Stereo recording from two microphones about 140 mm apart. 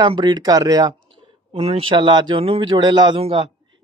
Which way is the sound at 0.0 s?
30° right (ahead or behind).